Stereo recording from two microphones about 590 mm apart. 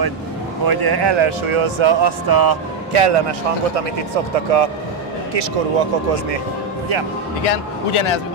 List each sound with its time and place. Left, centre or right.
0.7 s speech: right
2.9 s speech: right
7.4 s speech: left